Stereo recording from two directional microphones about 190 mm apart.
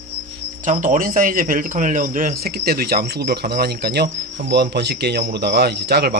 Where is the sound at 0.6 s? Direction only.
45° right (ahead or behind).